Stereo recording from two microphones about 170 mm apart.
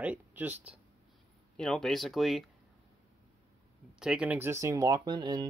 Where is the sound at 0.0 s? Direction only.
10° right (ahead or behind).